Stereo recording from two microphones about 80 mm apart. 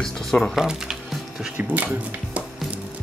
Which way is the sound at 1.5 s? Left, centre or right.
Right.